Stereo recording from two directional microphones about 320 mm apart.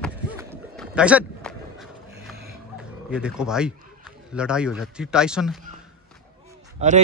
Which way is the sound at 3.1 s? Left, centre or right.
Centre.